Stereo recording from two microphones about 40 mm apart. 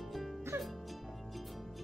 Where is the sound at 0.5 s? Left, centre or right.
Right.